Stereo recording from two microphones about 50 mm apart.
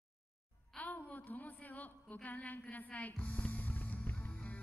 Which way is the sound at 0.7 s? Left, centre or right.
Left.